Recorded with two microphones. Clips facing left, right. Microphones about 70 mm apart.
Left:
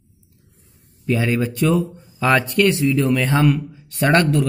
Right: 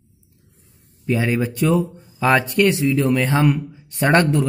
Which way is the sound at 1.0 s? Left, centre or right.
Centre.